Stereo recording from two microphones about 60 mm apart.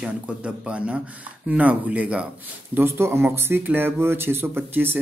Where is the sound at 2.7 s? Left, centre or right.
Right.